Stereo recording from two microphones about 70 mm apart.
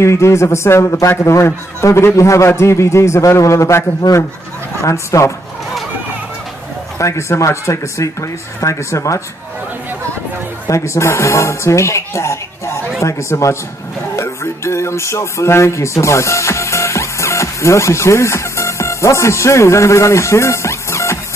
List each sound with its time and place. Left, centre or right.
0.0 s a man's voice: left
4.8 s a man's voice: left
7.0 s a man's voice: left
10.7 s a man's voice: left